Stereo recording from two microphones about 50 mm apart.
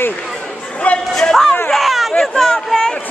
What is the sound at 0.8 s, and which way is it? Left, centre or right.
Speech, left.